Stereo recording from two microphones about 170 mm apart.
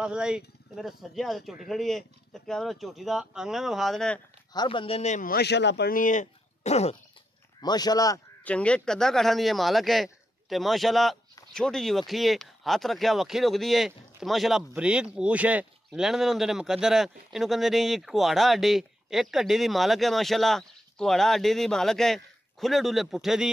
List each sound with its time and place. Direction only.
0.0 s speech: 5° right (ahead or behind)
4.6 s a man's voice: 30° left (ahead or behind)
7.6 s speech: 25° left (ahead or behind)
8.5 s speech: 5° left (ahead or behind)